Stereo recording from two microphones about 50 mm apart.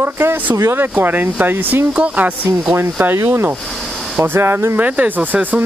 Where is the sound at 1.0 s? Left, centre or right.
Right.